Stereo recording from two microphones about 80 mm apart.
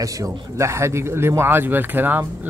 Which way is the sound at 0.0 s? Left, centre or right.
Right.